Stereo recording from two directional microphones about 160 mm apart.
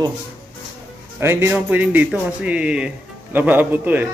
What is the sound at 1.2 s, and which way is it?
Speech, 15° right (ahead or behind).